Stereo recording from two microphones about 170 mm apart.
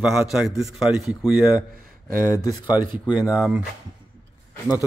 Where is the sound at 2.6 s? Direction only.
10° right (ahead or behind).